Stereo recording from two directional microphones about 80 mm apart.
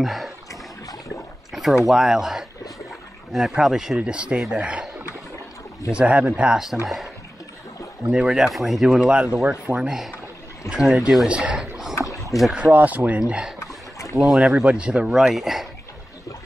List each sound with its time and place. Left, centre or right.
0.0 s speech: centre
0.5 s a sound: left
1.5 s a sound: centre
1.9 s speech: centre
5.9 s speech: centre
8.1 s speech: centre
9.8 s speech: centre
13.6 s a sound: left
14.2 s speech: centre